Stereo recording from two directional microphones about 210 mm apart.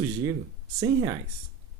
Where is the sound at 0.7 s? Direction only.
15° right (ahead or behind).